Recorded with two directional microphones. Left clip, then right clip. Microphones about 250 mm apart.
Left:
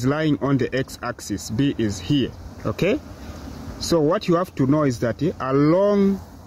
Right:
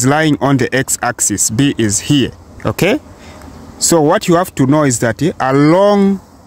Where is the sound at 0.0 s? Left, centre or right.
Right.